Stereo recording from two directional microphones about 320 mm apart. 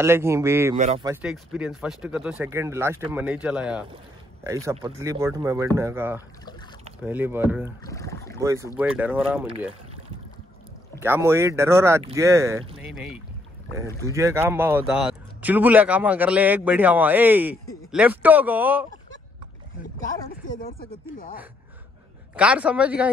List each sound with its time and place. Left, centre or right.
0.0 s speech: centre
0.7 s speech: centre
1.1 s speech: centre
7.8 s speech: centre
8.4 s speech: centre
11.0 s speech: centre
20.4 s speech: left
22.3 s speech: centre